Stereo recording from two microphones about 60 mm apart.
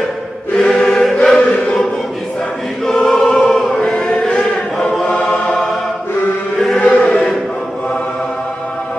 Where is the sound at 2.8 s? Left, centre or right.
Centre.